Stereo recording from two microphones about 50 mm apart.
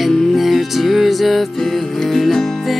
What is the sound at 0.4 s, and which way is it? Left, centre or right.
Music, centre.